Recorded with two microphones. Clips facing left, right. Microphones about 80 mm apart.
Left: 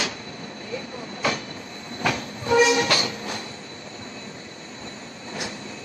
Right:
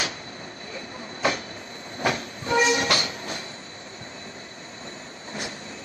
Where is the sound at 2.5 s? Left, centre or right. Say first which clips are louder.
Left 3 dB; right.